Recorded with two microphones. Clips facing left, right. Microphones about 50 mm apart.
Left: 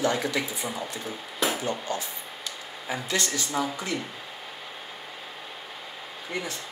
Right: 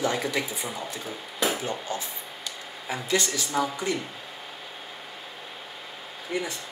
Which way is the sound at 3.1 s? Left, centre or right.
Centre.